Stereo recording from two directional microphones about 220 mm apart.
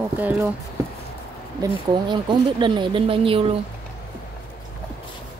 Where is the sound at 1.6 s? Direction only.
20° right (ahead or behind).